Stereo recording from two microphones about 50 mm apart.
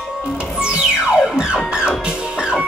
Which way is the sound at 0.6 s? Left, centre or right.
Centre.